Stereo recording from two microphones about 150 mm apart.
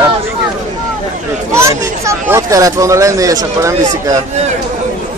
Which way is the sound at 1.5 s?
20° right (ahead or behind).